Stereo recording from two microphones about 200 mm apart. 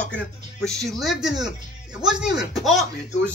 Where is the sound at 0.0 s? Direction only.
5° left (ahead or behind).